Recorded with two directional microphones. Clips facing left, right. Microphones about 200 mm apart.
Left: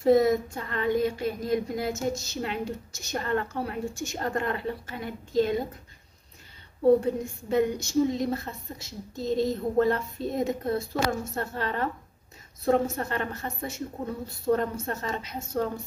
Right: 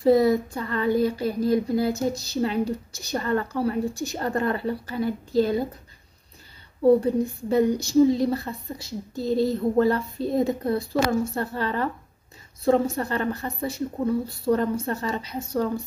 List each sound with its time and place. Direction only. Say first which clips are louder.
0.0 s a woman's voice: right 2 dB; 30° right (ahead or behind)
7.0 s a woman's voice: right 5 dB; 35° right (ahead or behind)
9.2 s speech: right 3 dB; 5° right (ahead or behind)
9.8 s a woman's voice: right 1 dB; 35° right (ahead or behind)